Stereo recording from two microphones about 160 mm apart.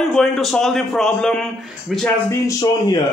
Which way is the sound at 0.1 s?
Centre (ahead or behind).